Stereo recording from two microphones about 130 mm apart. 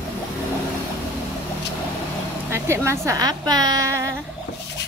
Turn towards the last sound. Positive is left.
turn(degrees=-20)  # may be behind; listen again after turning